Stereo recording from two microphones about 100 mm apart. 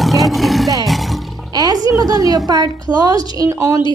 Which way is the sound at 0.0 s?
Centre (ahead or behind).